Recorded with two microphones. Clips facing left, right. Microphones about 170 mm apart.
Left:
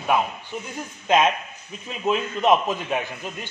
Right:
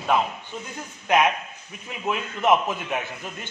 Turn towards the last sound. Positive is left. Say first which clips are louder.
# left 2 dB
turn(degrees=20)  # may be behind; listen again after turning